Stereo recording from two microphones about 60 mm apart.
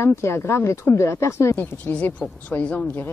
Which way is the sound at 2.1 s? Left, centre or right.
Left.